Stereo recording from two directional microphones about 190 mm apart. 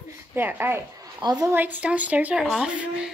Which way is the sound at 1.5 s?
10° right (ahead or behind).